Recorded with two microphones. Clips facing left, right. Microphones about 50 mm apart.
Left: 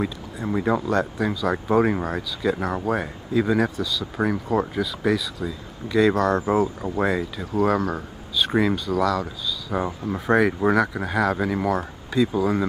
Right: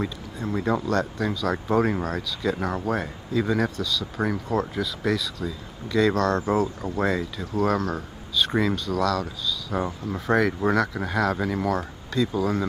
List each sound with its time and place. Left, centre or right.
0.0 s speech: centre